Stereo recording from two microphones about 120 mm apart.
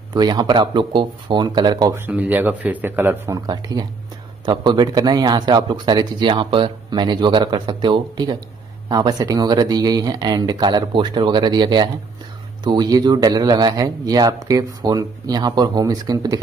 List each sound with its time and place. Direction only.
0.1 s a man's voice: 35° right (ahead or behind)
2.0 s a man's voice: 15° right (ahead or behind)
3.4 s a man's voice: 35° right (ahead or behind)